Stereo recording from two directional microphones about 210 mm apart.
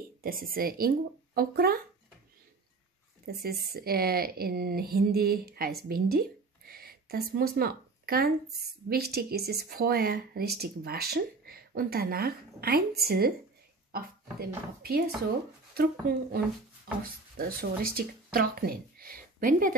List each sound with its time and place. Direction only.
0.2 s speech: 45° right (ahead or behind)
3.3 s speech: 45° right (ahead or behind)
14.4 s speech: 50° right (ahead or behind)